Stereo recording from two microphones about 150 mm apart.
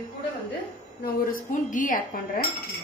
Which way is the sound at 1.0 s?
65° left (ahead or behind).